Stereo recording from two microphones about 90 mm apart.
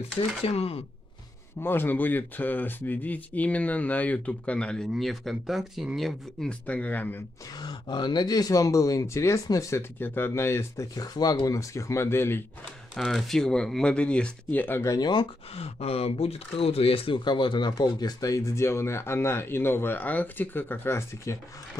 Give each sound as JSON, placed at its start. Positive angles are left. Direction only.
{"t": 0.4, "sound": "speech", "side_deg": 90}
{"t": 1.6, "sound": "speech", "side_deg": 25}
{"t": 4.9, "sound": "speech", "side_deg": 0}
{"t": 6.6, "sound": "speech", "side_deg": 15}
{"t": 7.5, "sound": "speech", "side_deg": 50}
{"t": 11.0, "sound": "speech", "side_deg": 45}
{"t": 12.9, "sound": "speech", "side_deg": 5}
{"t": 14.9, "sound": "speech", "side_deg": 50}
{"t": 15.5, "sound": "speech", "side_deg": 90}